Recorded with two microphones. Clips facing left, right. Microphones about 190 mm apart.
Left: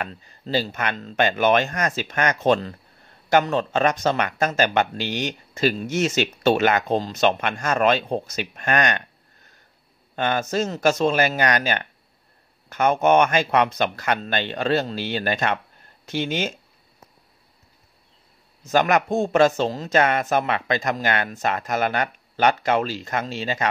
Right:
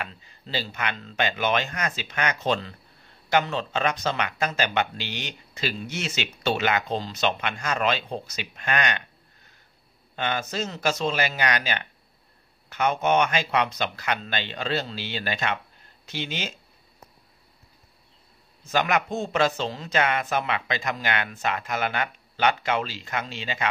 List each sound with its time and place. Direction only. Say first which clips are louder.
0.0 s speech: left 5 dB; 45° left (ahead or behind)
10.1 s speech: left 6 dB; 50° left (ahead or behind)
18.7 s speech: left 5 dB; 45° left (ahead or behind)